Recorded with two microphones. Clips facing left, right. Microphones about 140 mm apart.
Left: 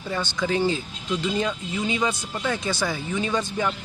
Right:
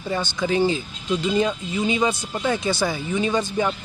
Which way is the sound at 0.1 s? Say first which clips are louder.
Right 2 dB; 15° right (ahead or behind).